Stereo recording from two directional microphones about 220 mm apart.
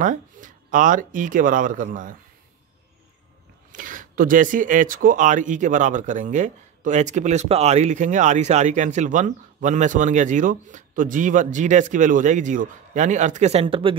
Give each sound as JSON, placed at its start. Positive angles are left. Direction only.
{"t": 0.0, "sound": "speech", "side_deg": -35}
{"t": 3.7, "sound": "speech", "side_deg": -35}